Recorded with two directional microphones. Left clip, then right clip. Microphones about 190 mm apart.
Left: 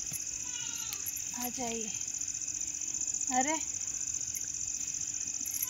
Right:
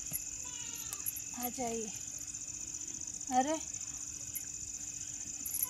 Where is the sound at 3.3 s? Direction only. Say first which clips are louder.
Even; 5° right (ahead or behind).